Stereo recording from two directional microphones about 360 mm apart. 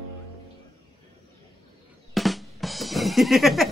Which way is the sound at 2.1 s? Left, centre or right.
Centre.